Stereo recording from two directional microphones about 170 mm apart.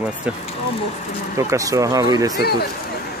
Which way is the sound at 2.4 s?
70° left (ahead or behind).